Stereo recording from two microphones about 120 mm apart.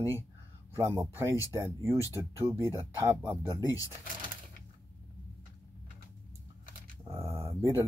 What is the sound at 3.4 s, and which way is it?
Speech, 25° left (ahead or behind).